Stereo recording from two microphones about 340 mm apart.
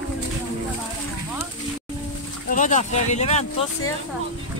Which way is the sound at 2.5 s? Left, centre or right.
Left.